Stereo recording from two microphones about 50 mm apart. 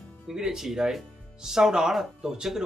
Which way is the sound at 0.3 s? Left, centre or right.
Centre.